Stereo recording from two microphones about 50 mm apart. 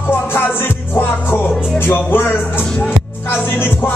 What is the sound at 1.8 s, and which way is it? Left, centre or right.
Music, left.